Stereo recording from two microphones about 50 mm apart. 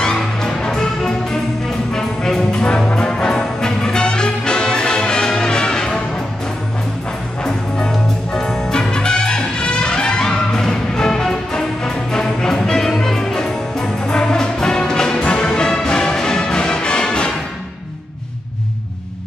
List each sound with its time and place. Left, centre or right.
0.0 s music: centre
7.4 s music: centre